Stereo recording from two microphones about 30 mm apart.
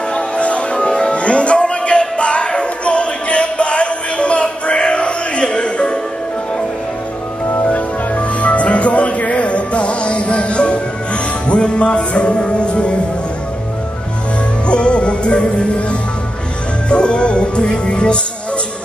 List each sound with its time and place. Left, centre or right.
0.1 s music: left
7.6 s music: left
14.7 s music: left
16.9 s speech: left